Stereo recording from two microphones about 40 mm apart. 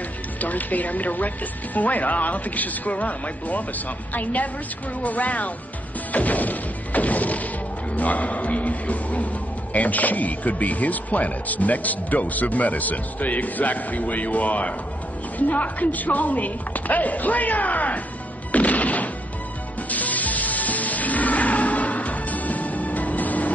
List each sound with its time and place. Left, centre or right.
0.4 s speech: left
6.1 s thump: left
7.9 s a man's voice: left
18.5 s music: left